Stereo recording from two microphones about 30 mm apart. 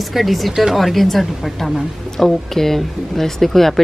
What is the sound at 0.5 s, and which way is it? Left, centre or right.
Speech, centre.